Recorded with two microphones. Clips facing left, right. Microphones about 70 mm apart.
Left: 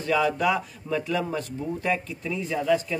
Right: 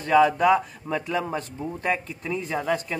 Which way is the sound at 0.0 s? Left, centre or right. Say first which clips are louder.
Right 5 dB; right.